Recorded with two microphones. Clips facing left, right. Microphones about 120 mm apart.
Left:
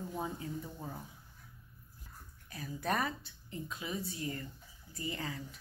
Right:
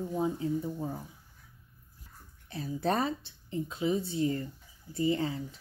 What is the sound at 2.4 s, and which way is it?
A woman's voice, 30° right (ahead or behind).